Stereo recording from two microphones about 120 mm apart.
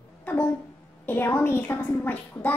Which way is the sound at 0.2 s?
15° left (ahead or behind).